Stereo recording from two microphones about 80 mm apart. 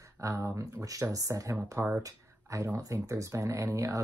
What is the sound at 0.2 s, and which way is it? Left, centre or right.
Speech, right.